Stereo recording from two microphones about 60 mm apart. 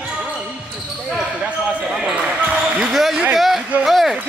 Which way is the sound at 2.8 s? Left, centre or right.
Centre.